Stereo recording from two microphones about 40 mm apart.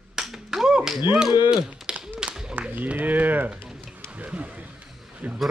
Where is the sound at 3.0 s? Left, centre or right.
Right.